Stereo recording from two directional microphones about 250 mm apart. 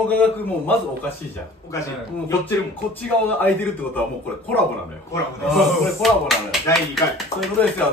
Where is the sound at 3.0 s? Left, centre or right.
Centre.